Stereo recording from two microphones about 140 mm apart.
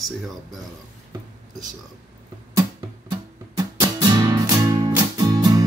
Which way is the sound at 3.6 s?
25° right (ahead or behind).